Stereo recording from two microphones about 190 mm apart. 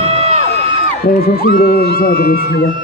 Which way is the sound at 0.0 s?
35° right (ahead or behind).